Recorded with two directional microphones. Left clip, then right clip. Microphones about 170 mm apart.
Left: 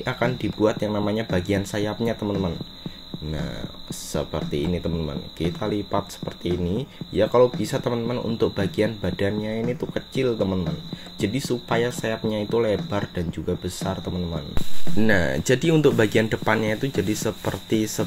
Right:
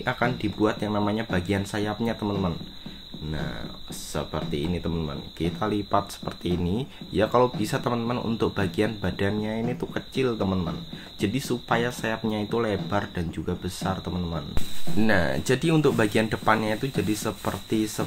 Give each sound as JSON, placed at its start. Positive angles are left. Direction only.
{"t": 0.0, "sound": "speech", "side_deg": 20}
{"t": 4.1, "sound": "speech", "side_deg": 20}
{"t": 5.6, "sound": "speech", "side_deg": 0}
{"t": 15.0, "sound": "speech", "side_deg": 20}